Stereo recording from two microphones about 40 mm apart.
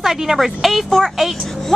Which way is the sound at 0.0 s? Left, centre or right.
Centre.